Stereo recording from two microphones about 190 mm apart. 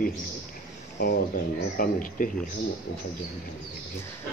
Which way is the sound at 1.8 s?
45° left (ahead or behind).